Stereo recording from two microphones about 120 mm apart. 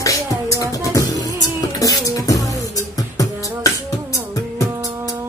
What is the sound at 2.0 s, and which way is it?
Beatboxing, 30° left (ahead or behind).